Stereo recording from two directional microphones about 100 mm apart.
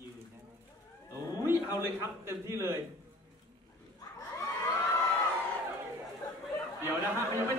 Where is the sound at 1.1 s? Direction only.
25° right (ahead or behind).